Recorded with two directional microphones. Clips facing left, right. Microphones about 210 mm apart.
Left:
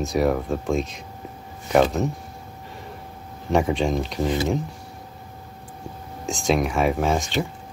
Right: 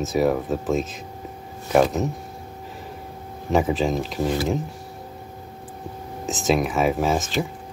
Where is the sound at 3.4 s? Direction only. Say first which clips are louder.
Even; centre (ahead or behind).